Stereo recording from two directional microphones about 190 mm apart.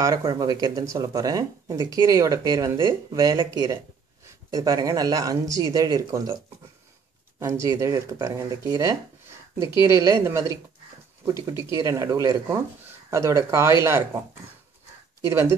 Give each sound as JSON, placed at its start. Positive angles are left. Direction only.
{"t": 0.0, "sound": "speech", "side_deg": -20}
{"t": 7.3, "sound": "speech", "side_deg": -15}
{"t": 15.2, "sound": "speech", "side_deg": -15}